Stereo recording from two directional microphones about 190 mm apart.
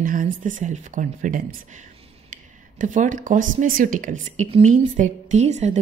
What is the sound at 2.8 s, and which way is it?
A woman's voice, 40° right (ahead or behind).